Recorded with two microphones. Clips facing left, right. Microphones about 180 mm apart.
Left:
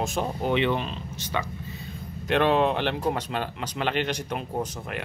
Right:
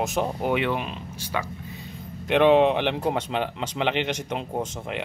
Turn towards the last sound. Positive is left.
turn(degrees=-20)  # may be behind; listen again after turning